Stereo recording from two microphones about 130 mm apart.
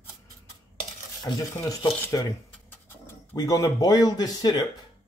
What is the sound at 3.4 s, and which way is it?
Speech, 25° left (ahead or behind).